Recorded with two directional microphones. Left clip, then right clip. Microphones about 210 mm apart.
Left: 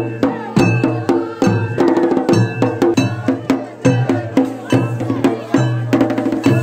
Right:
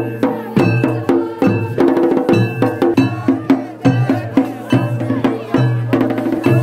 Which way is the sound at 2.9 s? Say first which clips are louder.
Right 2 dB; 45° left (ahead or behind).